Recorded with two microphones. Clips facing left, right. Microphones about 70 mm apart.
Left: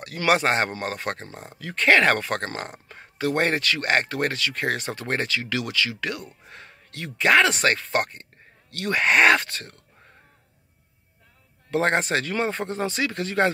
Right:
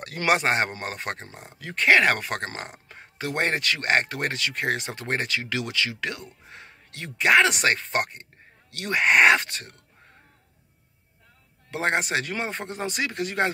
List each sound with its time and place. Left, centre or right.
0.2 s speech: centre
11.7 s speech: centre